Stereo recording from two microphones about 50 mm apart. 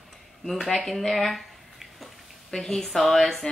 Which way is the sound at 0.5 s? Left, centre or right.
Centre.